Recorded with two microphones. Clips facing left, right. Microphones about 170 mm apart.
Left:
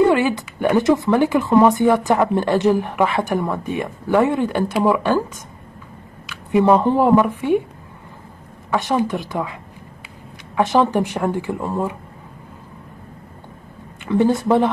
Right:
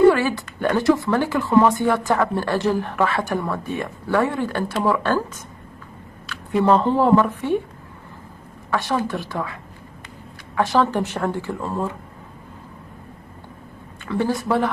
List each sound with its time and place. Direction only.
0.1 s a sound: 20° left (ahead or behind)
0.7 s speech: 20° left (ahead or behind)
6.2 s speech: 15° left (ahead or behind)
8.6 s speech: 20° left (ahead or behind)
14.0 s speech: 20° left (ahead or behind)